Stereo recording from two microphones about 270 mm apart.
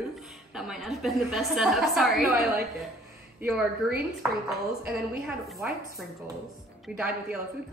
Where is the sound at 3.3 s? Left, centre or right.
Centre.